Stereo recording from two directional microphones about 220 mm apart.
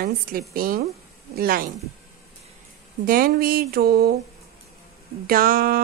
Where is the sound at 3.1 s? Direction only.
40° right (ahead or behind).